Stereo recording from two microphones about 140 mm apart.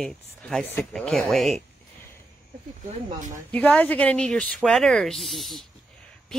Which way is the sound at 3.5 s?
10° left (ahead or behind).